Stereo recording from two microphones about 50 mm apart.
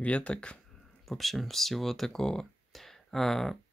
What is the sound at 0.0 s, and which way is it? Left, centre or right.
Speech, left.